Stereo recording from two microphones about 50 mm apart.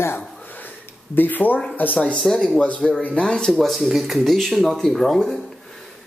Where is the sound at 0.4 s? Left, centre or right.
Left.